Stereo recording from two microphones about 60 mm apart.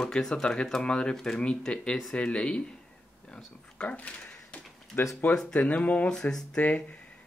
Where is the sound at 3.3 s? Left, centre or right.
Left.